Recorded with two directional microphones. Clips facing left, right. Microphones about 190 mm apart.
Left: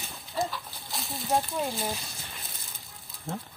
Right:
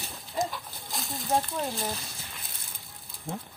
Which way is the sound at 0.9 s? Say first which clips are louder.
Even; centre (ahead or behind).